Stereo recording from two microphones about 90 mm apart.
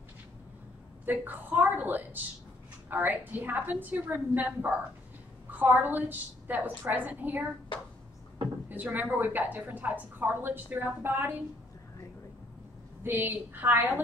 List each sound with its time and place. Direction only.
1.0 s a woman's voice: 20° right (ahead or behind)
8.6 s a woman's voice: 20° right (ahead or behind)
13.0 s a woman's voice: 25° right (ahead or behind)